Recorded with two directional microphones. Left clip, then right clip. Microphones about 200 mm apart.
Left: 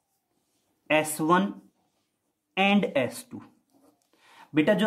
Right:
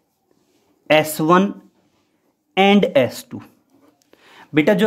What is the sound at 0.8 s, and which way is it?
Speech, 25° right (ahead or behind).